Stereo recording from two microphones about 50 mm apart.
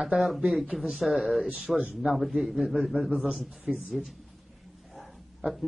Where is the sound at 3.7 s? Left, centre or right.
Right.